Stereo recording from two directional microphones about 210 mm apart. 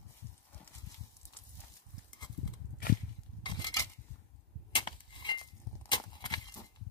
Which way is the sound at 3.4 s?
20° left (ahead or behind).